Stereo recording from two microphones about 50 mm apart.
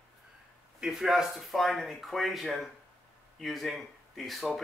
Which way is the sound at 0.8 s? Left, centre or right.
Centre.